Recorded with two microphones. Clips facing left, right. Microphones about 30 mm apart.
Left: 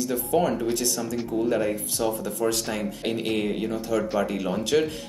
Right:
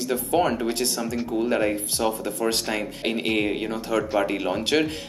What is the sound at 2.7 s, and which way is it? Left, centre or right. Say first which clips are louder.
Speech: right 2 dB; right.